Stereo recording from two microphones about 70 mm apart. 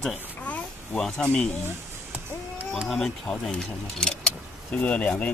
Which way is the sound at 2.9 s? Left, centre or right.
Centre.